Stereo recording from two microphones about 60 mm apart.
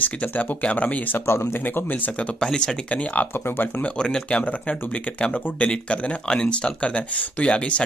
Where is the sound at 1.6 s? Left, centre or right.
Left; by 2.8 s centre.